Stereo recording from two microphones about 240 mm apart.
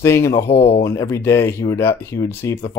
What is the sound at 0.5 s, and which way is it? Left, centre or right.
Speech, left.